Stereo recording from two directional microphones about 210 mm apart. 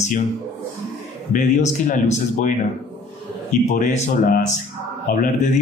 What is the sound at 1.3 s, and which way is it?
A man's voice, 35° left (ahead or behind).